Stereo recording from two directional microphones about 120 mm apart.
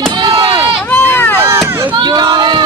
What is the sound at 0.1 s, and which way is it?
Chop, 35° right (ahead or behind).